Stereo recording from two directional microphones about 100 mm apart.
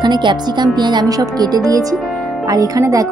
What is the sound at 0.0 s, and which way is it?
Speech, 50° right (ahead or behind).